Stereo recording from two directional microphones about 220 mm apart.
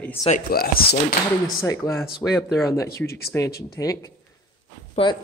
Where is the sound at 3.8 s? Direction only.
15° left (ahead or behind).